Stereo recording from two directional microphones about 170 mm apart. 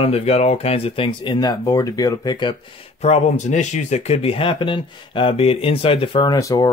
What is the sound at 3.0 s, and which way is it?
Speech, 40° left (ahead or behind).